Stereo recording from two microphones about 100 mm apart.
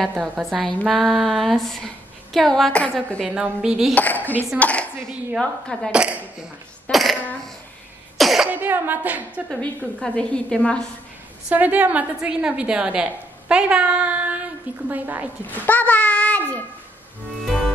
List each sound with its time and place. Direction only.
0.4 s a sound: centre (ahead or behind)
3.3 s a woman's voice: 10° right (ahead or behind)
3.9 s a woman's voice: 15° left (ahead or behind)
5.9 s a woman's voice: 10° right (ahead or behind)
6.9 s a sound: centre (ahead or behind)
8.2 s cough: centre (ahead or behind)
8.5 s a woman's voice: 20° right (ahead or behind)
9.6 s a woman's voice: 10° left (ahead or behind)
11.4 s a woman's voice: 15° right (ahead or behind)
15.4 s a woman's voice: 15° left (ahead or behind)
17.5 s music: 5° left (ahead or behind)